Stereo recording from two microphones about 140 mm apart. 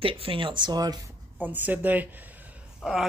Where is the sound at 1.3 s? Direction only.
10° right (ahead or behind).